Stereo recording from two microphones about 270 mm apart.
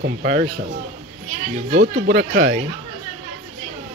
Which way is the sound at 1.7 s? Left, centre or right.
Right.